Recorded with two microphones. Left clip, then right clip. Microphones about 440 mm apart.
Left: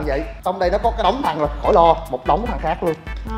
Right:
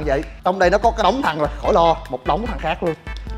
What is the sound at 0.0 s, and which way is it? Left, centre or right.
A man's voice, right.